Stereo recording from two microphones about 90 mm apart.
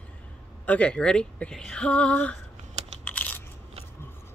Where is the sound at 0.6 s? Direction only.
15° left (ahead or behind).